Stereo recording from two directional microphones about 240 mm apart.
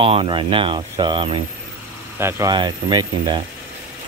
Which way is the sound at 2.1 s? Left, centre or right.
Centre.